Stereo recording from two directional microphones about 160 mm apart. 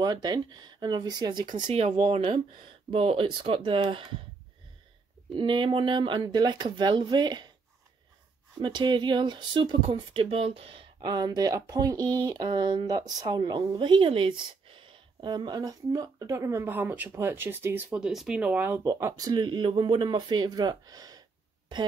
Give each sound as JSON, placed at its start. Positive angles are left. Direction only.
{"t": 0.0, "sound": "speech", "side_deg": -25}
{"t": 1.7, "sound": "speech", "side_deg": -40}
{"t": 5.3, "sound": "speech", "side_deg": -30}
{"t": 8.5, "sound": "speech", "side_deg": -30}
{"t": 18.9, "sound": "speech", "side_deg": -20}